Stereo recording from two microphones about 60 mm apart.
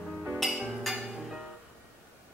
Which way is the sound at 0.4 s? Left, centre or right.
Centre.